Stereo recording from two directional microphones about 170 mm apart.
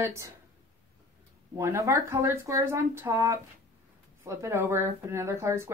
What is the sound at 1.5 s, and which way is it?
A woman's voice, 15° right (ahead or behind).